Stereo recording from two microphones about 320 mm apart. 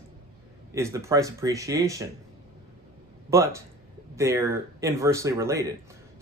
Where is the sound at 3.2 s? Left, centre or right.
Centre.